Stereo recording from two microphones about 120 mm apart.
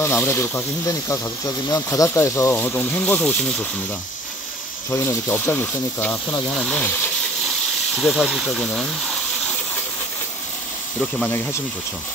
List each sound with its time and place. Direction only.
0.0 s speech: 20° left (ahead or behind)
4.9 s speech: 20° left (ahead or behind)
7.9 s speech: centre (ahead or behind)
11.2 s speech: 20° left (ahead or behind)